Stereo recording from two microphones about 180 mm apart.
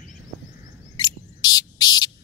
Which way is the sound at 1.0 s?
20° left (ahead or behind).